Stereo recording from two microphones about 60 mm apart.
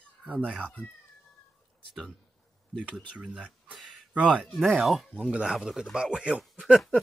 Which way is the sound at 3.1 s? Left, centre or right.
Centre.